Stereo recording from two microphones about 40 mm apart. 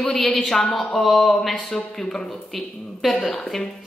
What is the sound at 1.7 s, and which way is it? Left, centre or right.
A woman's voice, centre.